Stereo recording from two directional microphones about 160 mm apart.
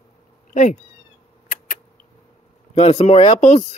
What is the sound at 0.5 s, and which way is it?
Speech, 50° left (ahead or behind).